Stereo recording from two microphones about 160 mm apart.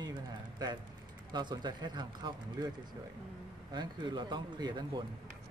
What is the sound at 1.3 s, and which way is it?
Speech, 25° right (ahead or behind).